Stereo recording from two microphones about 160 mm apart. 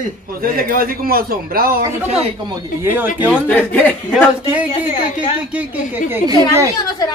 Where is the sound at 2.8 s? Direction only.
10° right (ahead or behind).